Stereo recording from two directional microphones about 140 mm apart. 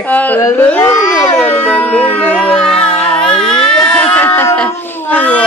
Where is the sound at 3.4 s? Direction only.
5° left (ahead or behind).